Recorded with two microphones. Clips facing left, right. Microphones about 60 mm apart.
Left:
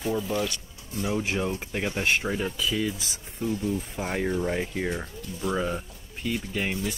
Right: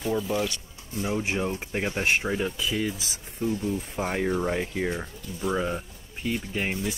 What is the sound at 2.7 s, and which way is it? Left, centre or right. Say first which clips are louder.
Speech: even; right.